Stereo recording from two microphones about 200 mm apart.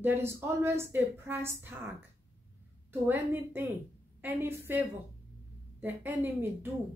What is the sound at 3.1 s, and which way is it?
A woman's voice, 15° right (ahead or behind).